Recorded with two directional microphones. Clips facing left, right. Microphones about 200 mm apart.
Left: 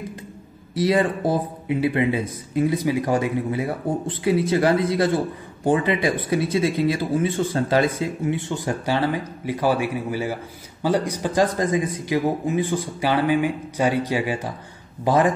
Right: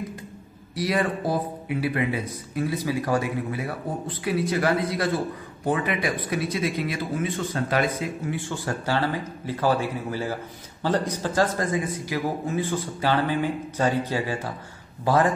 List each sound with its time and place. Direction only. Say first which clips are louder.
0.7 s speech: left 5 dB; 25° left (ahead or behind)